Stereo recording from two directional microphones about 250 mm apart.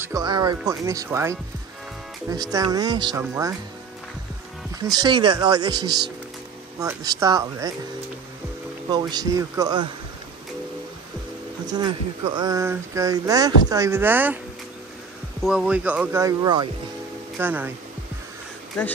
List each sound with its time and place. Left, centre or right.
0.0 s speech: centre
4.8 s speech: centre
8.9 s speech: centre
11.6 s speech: centre
15.4 s speech: centre